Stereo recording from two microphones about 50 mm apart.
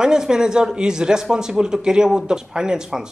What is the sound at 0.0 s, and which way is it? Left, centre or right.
Speech, centre.